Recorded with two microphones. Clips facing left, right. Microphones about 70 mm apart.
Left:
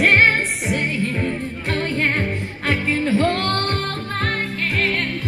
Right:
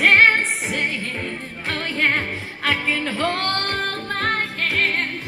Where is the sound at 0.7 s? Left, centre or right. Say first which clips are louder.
Left 3 dB; right.